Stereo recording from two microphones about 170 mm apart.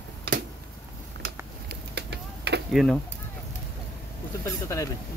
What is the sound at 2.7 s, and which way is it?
Speech, centre (ahead or behind).